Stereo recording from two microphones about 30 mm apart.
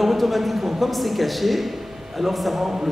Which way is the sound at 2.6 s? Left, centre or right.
Centre.